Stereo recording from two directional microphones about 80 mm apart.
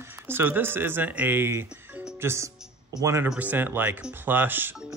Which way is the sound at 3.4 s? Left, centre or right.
Right.